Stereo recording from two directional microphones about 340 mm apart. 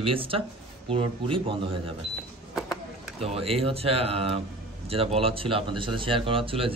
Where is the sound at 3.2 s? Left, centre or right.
Centre.